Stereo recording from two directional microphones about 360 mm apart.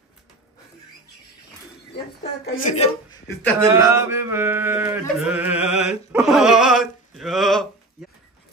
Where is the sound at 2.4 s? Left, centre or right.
Left.